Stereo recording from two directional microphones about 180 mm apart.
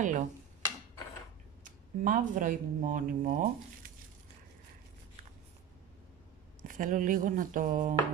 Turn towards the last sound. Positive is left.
turn(degrees=-50)  # may be behind; listen again after turning